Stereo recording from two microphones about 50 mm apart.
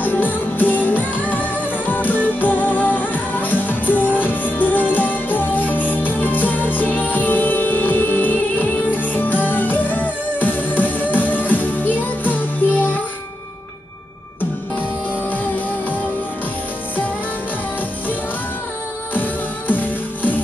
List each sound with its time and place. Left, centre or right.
0.0 s music: left
19.7 s music: left